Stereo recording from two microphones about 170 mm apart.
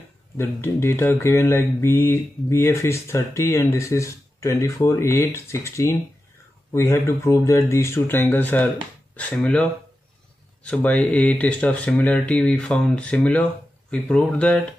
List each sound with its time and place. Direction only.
0.4 s speech: 15° left (ahead or behind)